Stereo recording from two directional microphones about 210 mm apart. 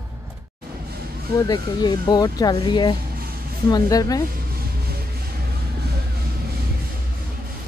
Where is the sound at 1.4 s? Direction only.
20° left (ahead or behind).